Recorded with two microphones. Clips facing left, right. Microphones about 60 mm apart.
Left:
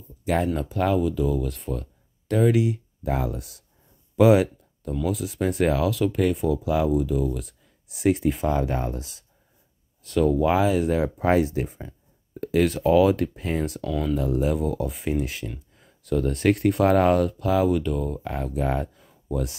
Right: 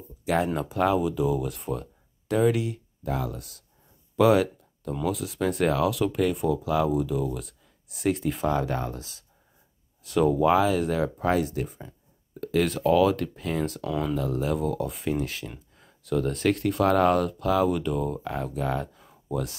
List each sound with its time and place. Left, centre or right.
0.2 s speech: centre
3.1 s speech: left
4.2 s a sound: centre
5.0 s speech: centre
10.0 s speech: centre
10.4 s speech: centre
11.2 s speech: left
12.4 s speech: centre
13.7 s speech: centre
14.1 s speech: centre
15.8 s a sound: centre
16.4 s speech: centre
17.1 s speech: centre
18.9 s a sound: centre